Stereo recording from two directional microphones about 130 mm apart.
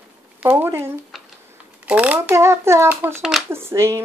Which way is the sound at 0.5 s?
20° right (ahead or behind).